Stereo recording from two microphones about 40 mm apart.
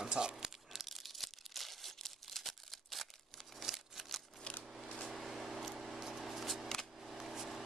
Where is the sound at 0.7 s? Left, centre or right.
Centre.